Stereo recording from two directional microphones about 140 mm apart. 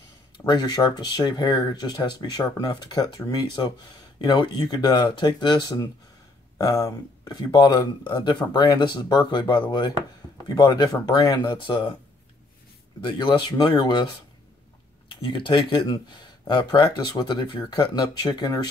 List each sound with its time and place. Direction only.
0.4 s speech: 30° left (ahead or behind)
13.0 s speech: 35° left (ahead or behind)
15.0 s speech: 35° left (ahead or behind)